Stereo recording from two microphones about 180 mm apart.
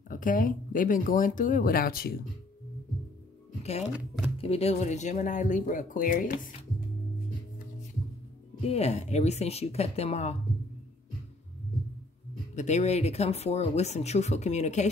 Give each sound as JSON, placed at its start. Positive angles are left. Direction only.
{"t": 0.1, "sound": "speech", "side_deg": 50}
{"t": 4.4, "sound": "speech", "side_deg": 35}
{"t": 8.6, "sound": "speech", "side_deg": 35}
{"t": 12.5, "sound": "speech", "side_deg": 40}